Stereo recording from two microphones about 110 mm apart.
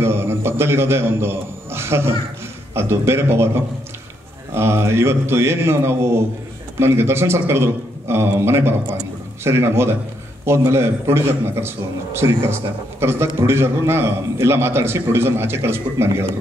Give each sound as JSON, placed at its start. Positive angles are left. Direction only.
{"t": 0.0, "sound": "a man's voice", "side_deg": -20}